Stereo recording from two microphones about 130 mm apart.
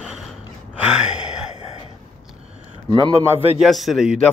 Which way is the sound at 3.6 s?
Centre (ahead or behind).